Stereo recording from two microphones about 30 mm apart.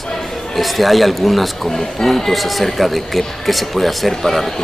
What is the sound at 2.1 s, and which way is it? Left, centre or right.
Speech, centre.